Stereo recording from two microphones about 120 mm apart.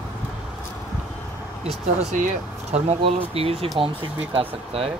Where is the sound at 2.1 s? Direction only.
80° right; by 4.9 s 55° right (ahead or behind).